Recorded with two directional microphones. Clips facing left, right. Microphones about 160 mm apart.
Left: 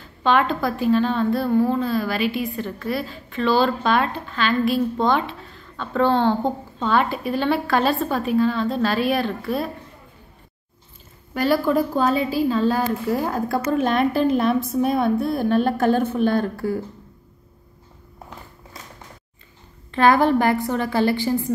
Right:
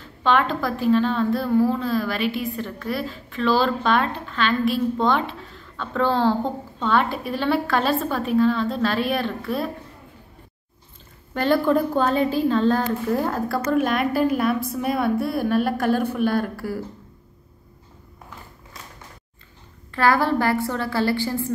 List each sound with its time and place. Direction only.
0.2 s a woman's voice: centre (ahead or behind)
11.3 s a woman's voice: 10° left (ahead or behind)
19.9 s a woman's voice: 20° left (ahead or behind)